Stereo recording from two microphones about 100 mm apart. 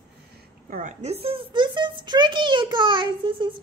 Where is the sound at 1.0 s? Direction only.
80° right.